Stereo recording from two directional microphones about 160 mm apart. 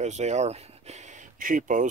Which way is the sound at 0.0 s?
45° right (ahead or behind).